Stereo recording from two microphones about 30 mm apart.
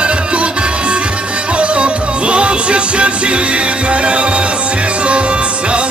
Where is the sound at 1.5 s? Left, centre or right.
Right.